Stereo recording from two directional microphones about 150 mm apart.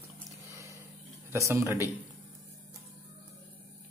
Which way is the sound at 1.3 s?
20° right (ahead or behind).